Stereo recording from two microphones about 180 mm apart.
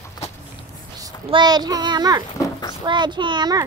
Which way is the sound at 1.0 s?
25° right (ahead or behind).